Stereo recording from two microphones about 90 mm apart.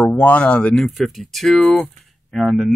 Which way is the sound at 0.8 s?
Centre (ahead or behind).